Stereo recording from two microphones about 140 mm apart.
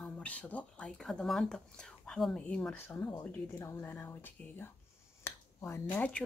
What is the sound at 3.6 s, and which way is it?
Speech, 15° left (ahead or behind).